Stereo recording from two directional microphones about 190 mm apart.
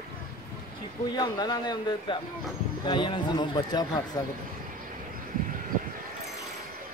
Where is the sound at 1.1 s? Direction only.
20° left (ahead or behind).